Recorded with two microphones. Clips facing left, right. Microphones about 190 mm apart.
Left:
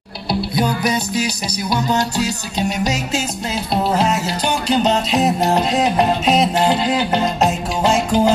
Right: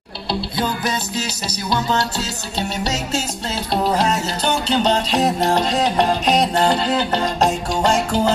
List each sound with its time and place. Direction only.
0.6 s music: 15° left (ahead or behind)